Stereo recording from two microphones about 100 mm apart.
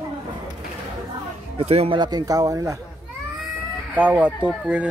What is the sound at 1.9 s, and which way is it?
Speech, 40° right (ahead or behind).